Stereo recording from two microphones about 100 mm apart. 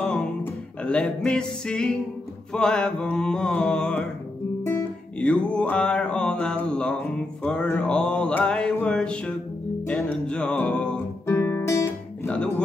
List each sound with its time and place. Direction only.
0.0 s music: 10° left (ahead or behind)
2.5 s mantra: 5° left (ahead or behind)
5.2 s mantra: 10° left (ahead or behind)
7.4 s male singing: 15° left (ahead or behind)
9.8 s music: 10° left (ahead or behind)
11.2 s guitar: 25° left (ahead or behind)
12.3 s music: 10° left (ahead or behind)